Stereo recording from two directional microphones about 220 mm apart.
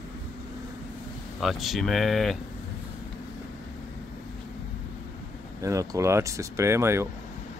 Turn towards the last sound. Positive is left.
turn(degrees=-10)  # may be behind; listen again after turning